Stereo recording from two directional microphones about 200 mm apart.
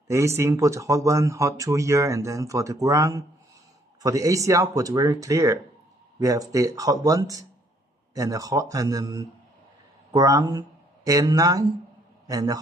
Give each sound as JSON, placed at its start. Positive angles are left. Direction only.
{"t": 0.1, "sound": "speech", "side_deg": -15}